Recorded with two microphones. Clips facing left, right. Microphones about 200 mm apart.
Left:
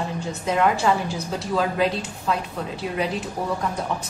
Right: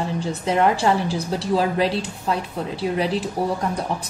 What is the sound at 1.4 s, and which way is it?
A woman's voice, 30° right (ahead or behind).